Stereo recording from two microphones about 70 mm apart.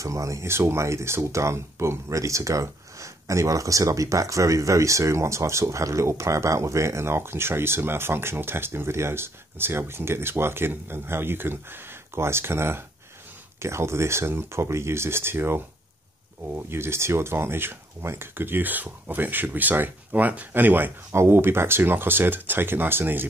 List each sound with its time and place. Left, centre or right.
0.0 s speech: right
0.5 s speech: right